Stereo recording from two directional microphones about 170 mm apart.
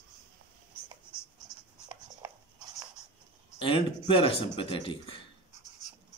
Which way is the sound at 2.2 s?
15° right (ahead or behind).